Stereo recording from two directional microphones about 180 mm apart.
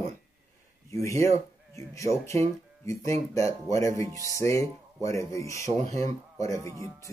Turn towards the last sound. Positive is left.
turn(degrees=15)  # may be behind; listen again after turning